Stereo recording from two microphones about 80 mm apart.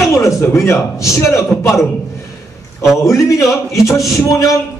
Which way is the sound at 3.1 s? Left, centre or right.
Left.